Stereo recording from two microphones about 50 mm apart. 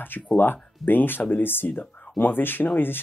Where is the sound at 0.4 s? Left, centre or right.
Left.